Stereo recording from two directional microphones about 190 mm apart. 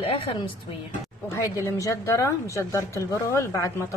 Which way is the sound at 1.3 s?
15° left (ahead or behind).